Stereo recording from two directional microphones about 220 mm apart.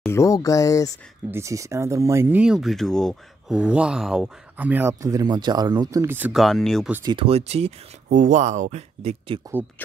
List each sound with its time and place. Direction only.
0.1 s speech: 15° left (ahead or behind)
1.3 s speech: 15° right (ahead or behind)
6.9 s speech: 15° right (ahead or behind)